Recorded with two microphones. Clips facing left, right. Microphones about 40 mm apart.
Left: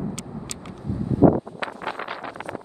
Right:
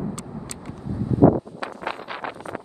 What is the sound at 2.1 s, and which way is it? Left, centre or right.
Wind noise, right.